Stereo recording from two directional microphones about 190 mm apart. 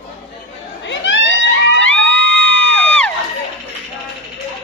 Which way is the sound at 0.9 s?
75° left (ahead or behind).